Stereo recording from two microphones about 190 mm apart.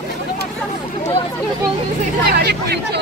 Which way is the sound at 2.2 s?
55° right (ahead or behind).